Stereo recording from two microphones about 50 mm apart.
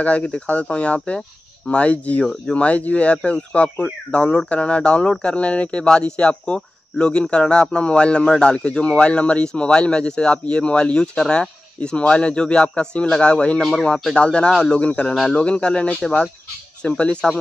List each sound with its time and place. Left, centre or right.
0.0 s speech: left
13.6 s speech: centre
14.1 s speech: left